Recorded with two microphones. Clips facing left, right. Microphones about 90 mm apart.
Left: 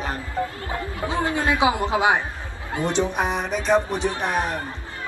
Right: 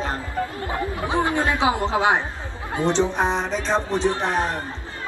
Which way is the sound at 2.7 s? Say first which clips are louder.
Right 2 dB; 25° right (ahead or behind).